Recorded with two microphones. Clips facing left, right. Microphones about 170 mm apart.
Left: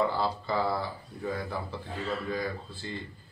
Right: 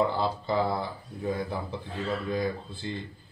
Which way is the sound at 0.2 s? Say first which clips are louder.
Right 2 dB; 20° right (ahead or behind).